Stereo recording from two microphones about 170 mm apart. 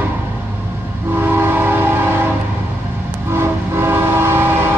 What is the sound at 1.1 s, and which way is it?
Train, 10° right (ahead or behind).